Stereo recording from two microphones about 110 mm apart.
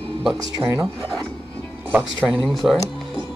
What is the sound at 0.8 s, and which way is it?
Rub, centre (ahead or behind).